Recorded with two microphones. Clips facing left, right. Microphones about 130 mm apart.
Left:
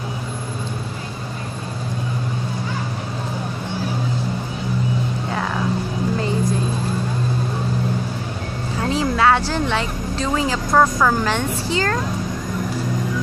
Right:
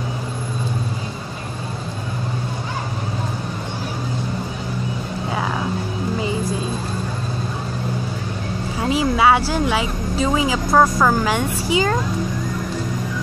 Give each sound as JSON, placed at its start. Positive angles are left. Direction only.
{"t": 8.8, "sound": "music", "side_deg": -10}
{"t": 9.5, "sound": "a woman's voice", "side_deg": -10}